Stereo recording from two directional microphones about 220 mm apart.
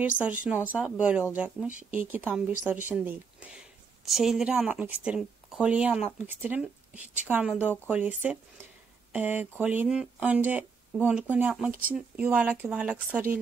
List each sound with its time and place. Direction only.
0.2 s a woman's voice: 5° right (ahead or behind)